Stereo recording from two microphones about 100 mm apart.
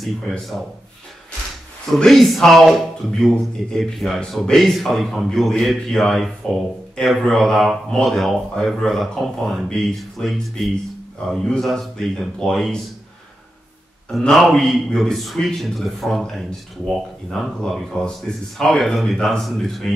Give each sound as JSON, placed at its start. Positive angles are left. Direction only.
{"t": 1.9, "sound": "speech", "side_deg": 5}
{"t": 14.1, "sound": "speech", "side_deg": 5}